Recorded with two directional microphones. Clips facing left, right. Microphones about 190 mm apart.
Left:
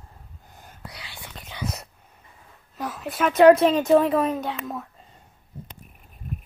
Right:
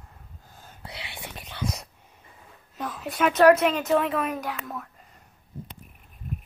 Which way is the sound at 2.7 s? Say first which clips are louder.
Left 1 dB; centre (ahead or behind).